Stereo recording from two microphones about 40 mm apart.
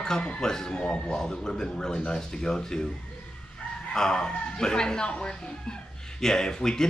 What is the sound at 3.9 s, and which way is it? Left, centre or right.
Speech, centre.